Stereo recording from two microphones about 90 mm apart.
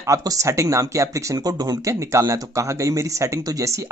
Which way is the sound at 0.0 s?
40° right (ahead or behind).